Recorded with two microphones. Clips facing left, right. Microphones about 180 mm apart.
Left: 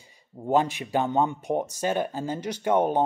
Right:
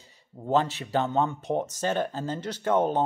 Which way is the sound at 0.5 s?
15° left (ahead or behind).